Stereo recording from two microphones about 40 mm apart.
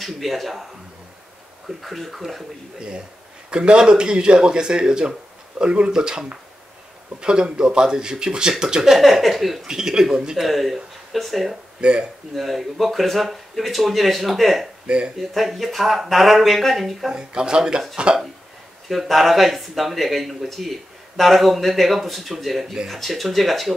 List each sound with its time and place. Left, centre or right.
0.0 s speech: centre
1.8 s speech: centre
3.4 s speech: right
8.9 s speech: centre
9.7 s speech: centre
10.3 s speech: centre
11.8 s speech: right
12.4 s speech: centre
17.1 s speech: centre
18.9 s speech: centre